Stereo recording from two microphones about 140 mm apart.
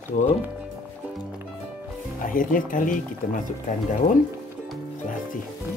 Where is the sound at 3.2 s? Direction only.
90° left.